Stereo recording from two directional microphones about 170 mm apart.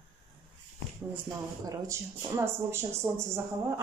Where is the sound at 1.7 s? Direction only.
15° right (ahead or behind).